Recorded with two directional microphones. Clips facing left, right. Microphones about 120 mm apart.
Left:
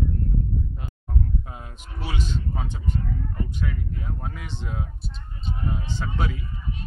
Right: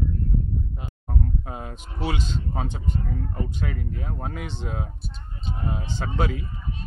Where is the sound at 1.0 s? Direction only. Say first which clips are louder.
Right 1 dB; 40° right (ahead or behind).